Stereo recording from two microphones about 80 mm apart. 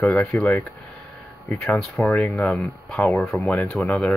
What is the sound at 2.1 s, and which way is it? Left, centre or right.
Speech, centre.